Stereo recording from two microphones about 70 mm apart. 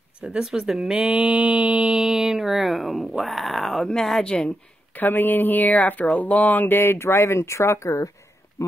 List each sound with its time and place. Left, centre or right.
0.2 s speech: centre
0.9 s mantra: centre
1.9 s speech: centre
4.9 s speech: left